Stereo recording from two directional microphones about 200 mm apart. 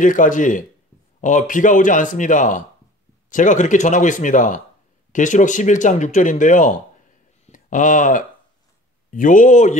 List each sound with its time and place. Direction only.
0.0 s speech: 40° left (ahead or behind)